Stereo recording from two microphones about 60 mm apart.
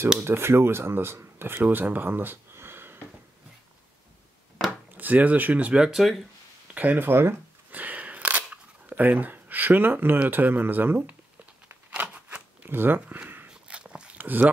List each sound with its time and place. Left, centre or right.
0.2 s speech: right
4.9 s speech: right
5.8 s speech: centre
6.7 s speech: right
7.7 s single-lens reflex camera: right
10.2 s speech: right
12.1 s crunch: right
12.6 s speech: right
13.5 s dog: centre
14.1 s a sound: right